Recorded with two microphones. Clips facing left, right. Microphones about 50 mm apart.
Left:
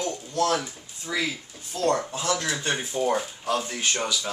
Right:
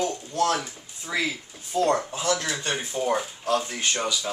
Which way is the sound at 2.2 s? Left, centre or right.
Centre.